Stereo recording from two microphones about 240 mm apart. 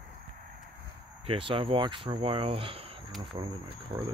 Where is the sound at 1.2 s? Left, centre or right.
Right.